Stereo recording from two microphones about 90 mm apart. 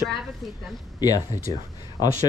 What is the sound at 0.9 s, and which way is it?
Speech, 45° left (ahead or behind).